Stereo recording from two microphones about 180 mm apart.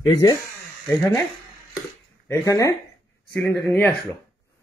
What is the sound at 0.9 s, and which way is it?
Speech, 15° left (ahead or behind).